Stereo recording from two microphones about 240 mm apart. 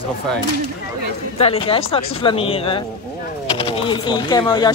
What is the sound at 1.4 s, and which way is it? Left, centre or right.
Speech, left.